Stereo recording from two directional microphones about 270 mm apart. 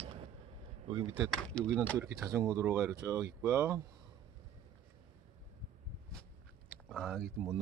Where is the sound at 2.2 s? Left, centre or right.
Centre.